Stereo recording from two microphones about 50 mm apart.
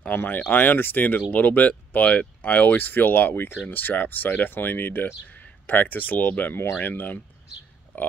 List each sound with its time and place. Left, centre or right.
0.1 s speech: left
6.5 s speech: left
6.8 s speech: left